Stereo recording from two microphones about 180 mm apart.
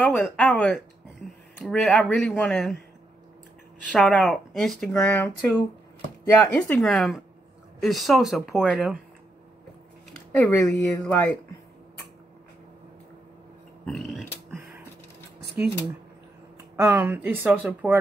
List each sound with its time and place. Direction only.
0.0 s speech: centre (ahead or behind)
3.9 s speech: 5° left (ahead or behind)
6.4 s speech: 5° left (ahead or behind)
10.3 s speech: 5° left (ahead or behind)
13.8 s a sound: centre (ahead or behind)
15.4 s a sound: 65° right (ahead or behind)
16.7 s speech: 10° right (ahead or behind)